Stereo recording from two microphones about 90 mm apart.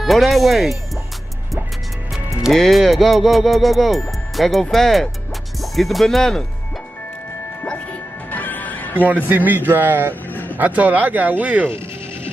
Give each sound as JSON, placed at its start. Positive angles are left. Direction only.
{"t": 0.0, "sound": "speech", "side_deg": 0}
{"t": 2.4, "sound": "speech", "side_deg": 0}
{"t": 8.3, "sound": "music", "side_deg": 20}
{"t": 9.0, "sound": "a man's voice", "side_deg": -20}
{"t": 10.3, "sound": "vehicle", "side_deg": 20}
{"t": 10.6, "sound": "speech", "side_deg": -15}